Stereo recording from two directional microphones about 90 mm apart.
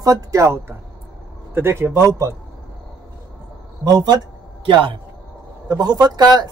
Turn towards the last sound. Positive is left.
turn(degrees=-50)  # may be behind; listen again after turning